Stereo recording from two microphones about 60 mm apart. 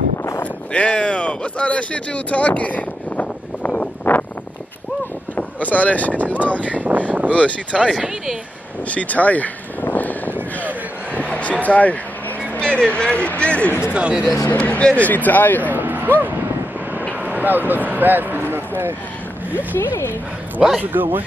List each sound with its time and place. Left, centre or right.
0.4 s a sound: centre
5.3 s speech: left
6.2 s speech: right
6.5 s speech: left
6.8 s speech: right
7.7 s speech: centre
8.8 s a sound: left
12.5 s speech: centre
13.9 s speech: centre
14.5 s speech: left
15.6 s a sound: right
17.2 s speech: right
19.5 s speech: left
20.8 s speech: right